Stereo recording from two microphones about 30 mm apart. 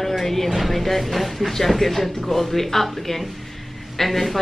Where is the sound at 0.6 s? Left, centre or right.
Centre.